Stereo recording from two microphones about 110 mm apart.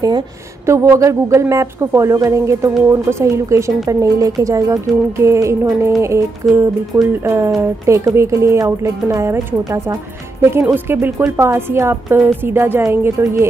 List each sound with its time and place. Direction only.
0.7 s speech: 25° right (ahead or behind)